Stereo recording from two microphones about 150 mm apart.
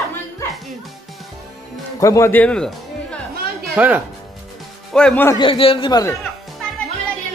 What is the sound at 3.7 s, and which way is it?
Speech, 10° right (ahead or behind).